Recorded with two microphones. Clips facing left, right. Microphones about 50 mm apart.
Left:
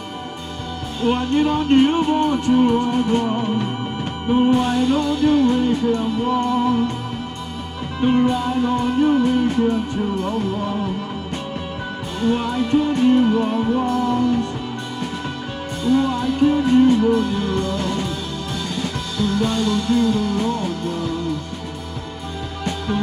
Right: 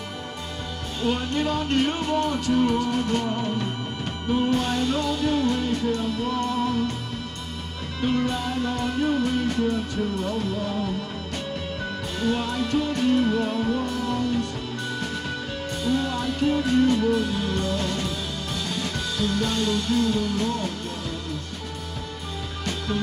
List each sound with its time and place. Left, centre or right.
1.0 s music: left
4.5 s music: centre
8.0 s music: left
12.2 s music: centre
15.8 s music: centre